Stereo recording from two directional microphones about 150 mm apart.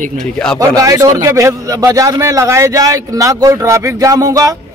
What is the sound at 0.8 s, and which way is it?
A man's voice, 25° right (ahead or behind).